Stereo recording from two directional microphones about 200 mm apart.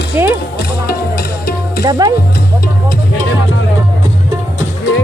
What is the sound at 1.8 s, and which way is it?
Speech, 20° right (ahead or behind).